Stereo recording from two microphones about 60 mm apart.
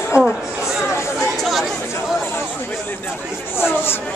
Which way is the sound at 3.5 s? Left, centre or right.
Left.